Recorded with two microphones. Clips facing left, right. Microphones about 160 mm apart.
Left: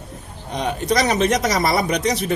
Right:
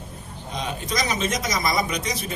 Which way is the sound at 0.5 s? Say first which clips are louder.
Left 8 dB; 65° left (ahead or behind).